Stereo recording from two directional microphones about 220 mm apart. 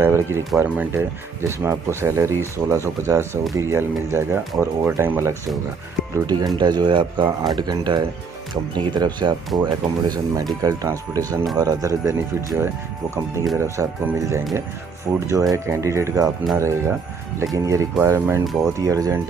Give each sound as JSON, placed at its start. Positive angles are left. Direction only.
{"t": 0.0, "sound": "speech", "side_deg": -10}